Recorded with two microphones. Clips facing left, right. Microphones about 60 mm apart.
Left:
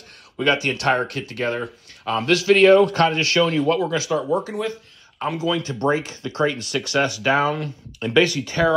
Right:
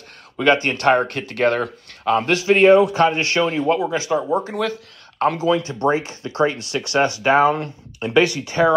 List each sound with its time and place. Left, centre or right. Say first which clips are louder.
0.4 s speech: right 3 dB; right
2.0 s speech: right 1 dB; right
2.8 s speech: right 1 dB; centre
3.2 s speech: even; right